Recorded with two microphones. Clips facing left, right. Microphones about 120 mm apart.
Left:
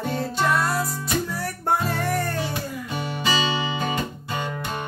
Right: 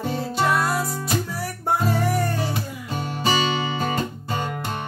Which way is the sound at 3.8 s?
35° right (ahead or behind).